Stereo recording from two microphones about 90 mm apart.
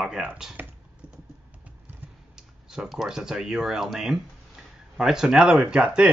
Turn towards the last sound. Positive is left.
turn(degrees=-10)  # may be behind; listen again after turning